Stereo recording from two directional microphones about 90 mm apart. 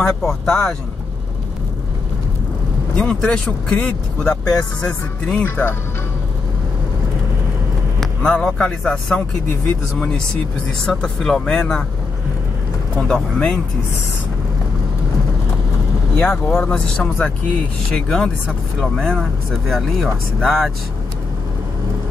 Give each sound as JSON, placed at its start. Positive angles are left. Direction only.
{"t": 0.0, "sound": "speech", "side_deg": 5}
{"t": 3.0, "sound": "speech", "side_deg": 10}
{"t": 5.4, "sound": "speech", "side_deg": 25}
{"t": 8.0, "sound": "speech", "side_deg": 10}
{"t": 13.1, "sound": "speech", "side_deg": 10}
{"t": 16.2, "sound": "speech", "side_deg": 20}